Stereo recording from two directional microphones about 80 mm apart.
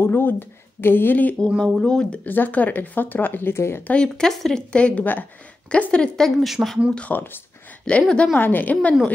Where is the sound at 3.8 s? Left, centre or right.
Centre.